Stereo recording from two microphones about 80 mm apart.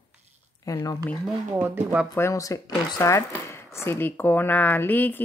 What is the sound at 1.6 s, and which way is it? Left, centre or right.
Speech, right.